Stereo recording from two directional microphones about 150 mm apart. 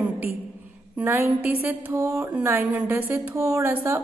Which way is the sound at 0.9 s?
15° right (ahead or behind).